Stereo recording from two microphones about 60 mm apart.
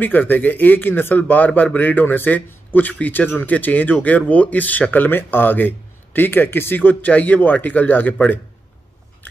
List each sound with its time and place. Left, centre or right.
0.0 s speech: left